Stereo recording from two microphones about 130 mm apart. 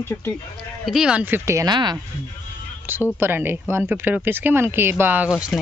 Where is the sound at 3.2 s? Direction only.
15° right (ahead or behind).